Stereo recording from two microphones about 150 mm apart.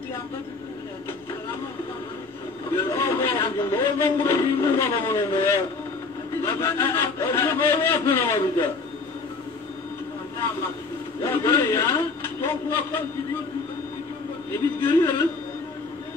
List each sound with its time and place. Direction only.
2.7 s a man's voice: 15° left (ahead or behind)
11.1 s a man's voice: 15° left (ahead or behind)
14.5 s a man's voice: 15° left (ahead or behind)